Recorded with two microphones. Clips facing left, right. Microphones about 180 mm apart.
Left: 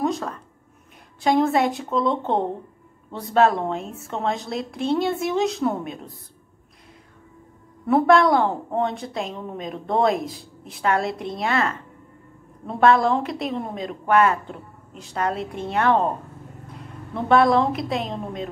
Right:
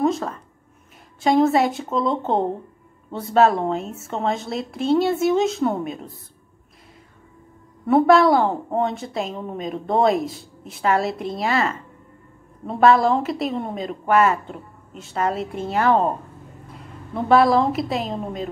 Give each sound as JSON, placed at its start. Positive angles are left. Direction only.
{"t": 0.0, "sound": "a sound", "side_deg": 0}
{"t": 1.2, "sound": "a woman's voice", "side_deg": 0}
{"t": 7.8, "sound": "a woman's voice", "side_deg": 0}